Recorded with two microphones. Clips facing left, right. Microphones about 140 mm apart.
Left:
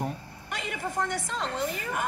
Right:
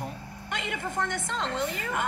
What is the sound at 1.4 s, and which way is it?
Speech, 20° left (ahead or behind).